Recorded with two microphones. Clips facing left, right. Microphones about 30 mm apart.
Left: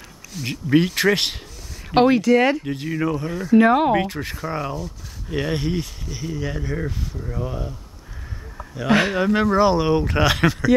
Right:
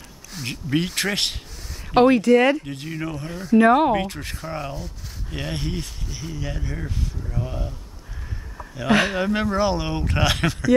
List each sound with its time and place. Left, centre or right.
0.5 s speech: centre
2.0 s speech: centre
2.2 s speech: left
2.6 s speech: centre
8.7 s speech: centre